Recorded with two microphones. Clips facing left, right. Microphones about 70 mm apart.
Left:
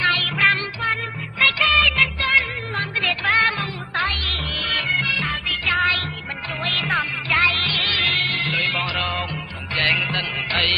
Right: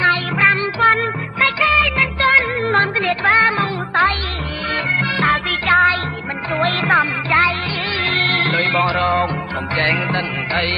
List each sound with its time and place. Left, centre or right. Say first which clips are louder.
0.0 s music: right 4 dB; right
2.1 s music: right 6 dB; right
3.0 s music: right 5 dB; right
5.1 s music: right 9 dB; right
8.4 s music: right 7 dB; right